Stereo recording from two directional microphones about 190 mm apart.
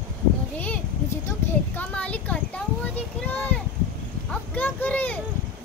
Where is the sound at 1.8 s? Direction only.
10° left (ahead or behind).